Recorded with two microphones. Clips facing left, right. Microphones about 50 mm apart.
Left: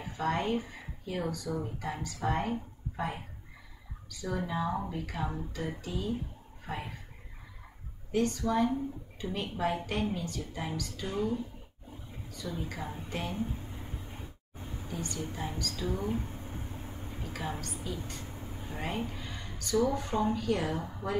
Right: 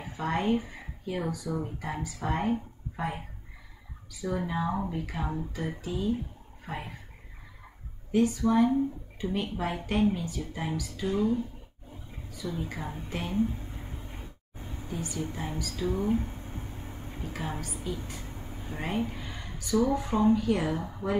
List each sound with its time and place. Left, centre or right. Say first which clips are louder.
0.0 s speech: right 2 dB; centre
4.1 s speech: right 3 dB; centre
8.1 s speech: right 4 dB; centre
14.9 s speech: right 3 dB; centre
17.4 s a woman's voice: right 1 dB; centre